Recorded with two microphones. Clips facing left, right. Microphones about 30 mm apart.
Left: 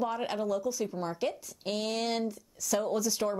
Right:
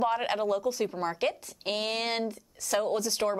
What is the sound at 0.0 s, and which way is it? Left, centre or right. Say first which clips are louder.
Speech: right 4 dB; right.